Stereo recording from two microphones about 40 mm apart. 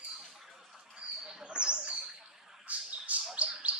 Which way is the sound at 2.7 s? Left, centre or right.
Right.